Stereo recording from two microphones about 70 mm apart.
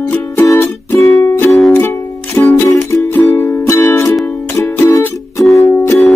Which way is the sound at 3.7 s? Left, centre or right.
Left.